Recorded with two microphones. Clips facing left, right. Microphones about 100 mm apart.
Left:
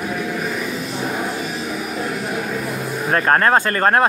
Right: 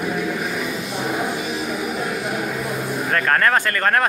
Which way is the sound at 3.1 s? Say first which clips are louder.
Left 3 dB; 30° left (ahead or behind).